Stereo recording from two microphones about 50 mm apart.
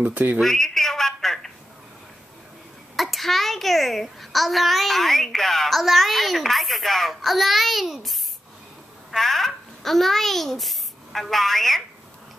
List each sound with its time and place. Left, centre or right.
0.0 s speech: right
0.4 s a sound: centre
3.0 s a child's voice: centre